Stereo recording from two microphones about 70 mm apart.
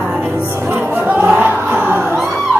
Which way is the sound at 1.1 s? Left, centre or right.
Right.